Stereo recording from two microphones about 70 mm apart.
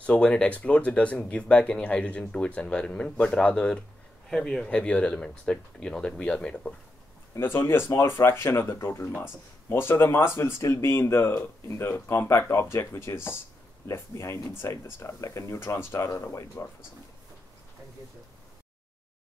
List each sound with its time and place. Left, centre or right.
0.0 s speech: centre
7.3 s speech: left
11.8 s speech: left
15.6 s speech: left